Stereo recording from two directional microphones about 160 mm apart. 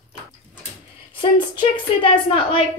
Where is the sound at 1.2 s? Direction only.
35° left (ahead or behind).